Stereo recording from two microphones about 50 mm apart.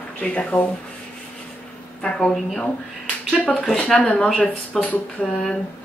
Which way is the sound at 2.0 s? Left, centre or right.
Centre.